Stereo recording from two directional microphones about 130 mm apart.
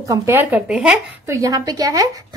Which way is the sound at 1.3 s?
25° right (ahead or behind).